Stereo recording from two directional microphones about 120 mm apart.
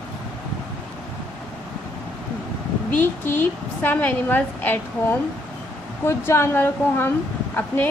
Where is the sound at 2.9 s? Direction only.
15° left (ahead or behind).